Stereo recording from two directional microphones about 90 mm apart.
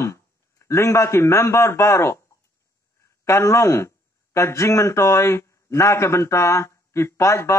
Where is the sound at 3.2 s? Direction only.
35° left (ahead or behind).